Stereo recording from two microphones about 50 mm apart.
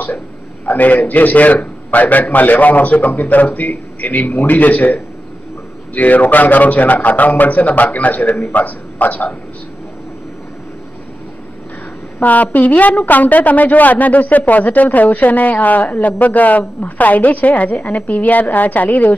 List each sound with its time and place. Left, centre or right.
0.7 s a woman's voice: left
12.2 s a woman's voice: left